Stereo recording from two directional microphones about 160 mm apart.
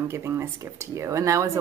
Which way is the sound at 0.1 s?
15° right (ahead or behind).